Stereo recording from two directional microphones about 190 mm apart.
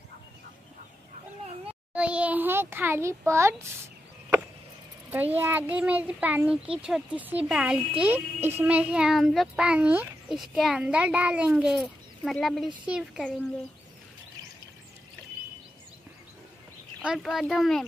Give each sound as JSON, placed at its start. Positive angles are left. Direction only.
{"t": 2.0, "sound": "a child's voice", "side_deg": -5}
{"t": 5.1, "sound": "a child's voice", "side_deg": -10}
{"t": 17.0, "sound": "a child's voice", "side_deg": -5}